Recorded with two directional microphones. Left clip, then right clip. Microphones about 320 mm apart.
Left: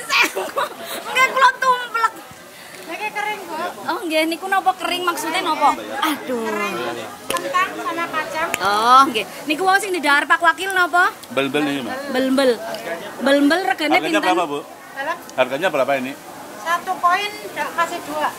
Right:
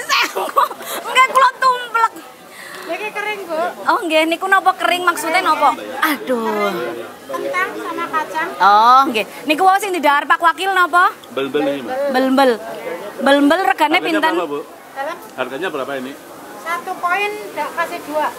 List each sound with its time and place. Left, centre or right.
0.1 s a sound: centre
3.0 s a sound: centre
3.8 s a woman's voice: right
7.5 s speech: centre
8.5 s a woman's voice: centre
11.3 s speech: left
12.1 s a woman's voice: centre
14.3 s speech: centre
15.3 s speech: left
16.6 s a woman's voice: left